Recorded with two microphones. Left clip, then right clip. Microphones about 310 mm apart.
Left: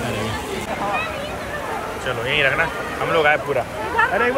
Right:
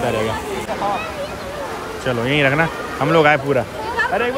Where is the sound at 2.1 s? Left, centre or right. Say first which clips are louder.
Right 2 dB; right.